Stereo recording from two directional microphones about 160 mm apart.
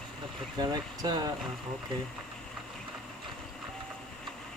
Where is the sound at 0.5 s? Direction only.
25° right (ahead or behind).